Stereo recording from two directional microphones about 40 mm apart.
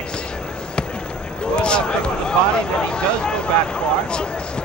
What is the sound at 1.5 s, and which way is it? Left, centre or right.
Speech, left.